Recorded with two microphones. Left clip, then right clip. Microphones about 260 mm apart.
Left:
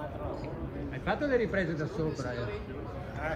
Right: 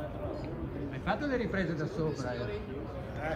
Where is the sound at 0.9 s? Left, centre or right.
Centre.